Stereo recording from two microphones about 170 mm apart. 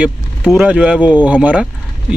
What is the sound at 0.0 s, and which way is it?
Speech, 5° right (ahead or behind).